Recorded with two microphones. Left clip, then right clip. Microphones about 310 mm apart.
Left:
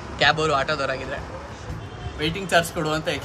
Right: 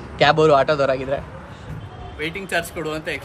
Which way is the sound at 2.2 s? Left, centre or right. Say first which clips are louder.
Left 3 dB; centre.